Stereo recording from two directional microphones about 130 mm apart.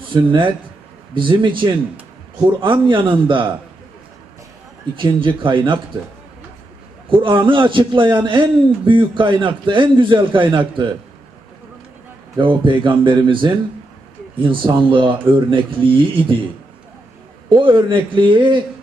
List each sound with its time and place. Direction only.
0.1 s a man's voice: 40° right (ahead or behind)
4.9 s a man's voice: 40° right (ahead or behind)
7.1 s a man's voice: 40° right (ahead or behind)
12.4 s a man's voice: 40° right (ahead or behind)
17.5 s a man's voice: 40° right (ahead or behind)